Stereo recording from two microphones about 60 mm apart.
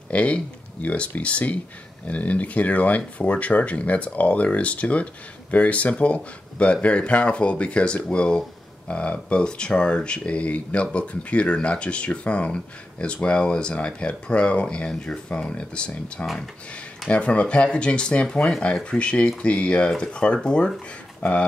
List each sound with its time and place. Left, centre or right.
0.1 s speech: left